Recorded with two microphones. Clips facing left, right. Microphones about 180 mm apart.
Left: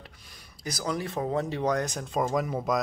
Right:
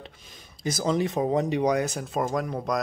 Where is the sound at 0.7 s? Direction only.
25° right (ahead or behind).